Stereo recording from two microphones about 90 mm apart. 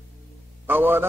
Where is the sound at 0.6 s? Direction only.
25° right (ahead or behind).